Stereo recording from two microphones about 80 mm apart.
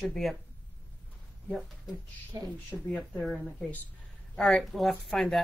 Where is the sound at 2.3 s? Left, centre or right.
Right.